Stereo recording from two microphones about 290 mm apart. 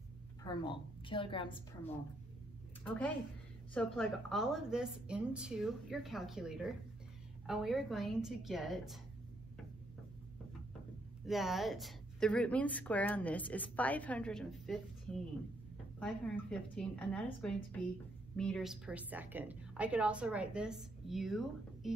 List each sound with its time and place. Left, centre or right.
0.4 s a woman's voice: centre
2.8 s a woman's voice: centre
11.2 s a woman's voice: centre